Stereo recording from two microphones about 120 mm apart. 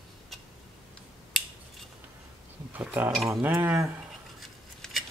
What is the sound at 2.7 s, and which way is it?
Speech, 15° right (ahead or behind).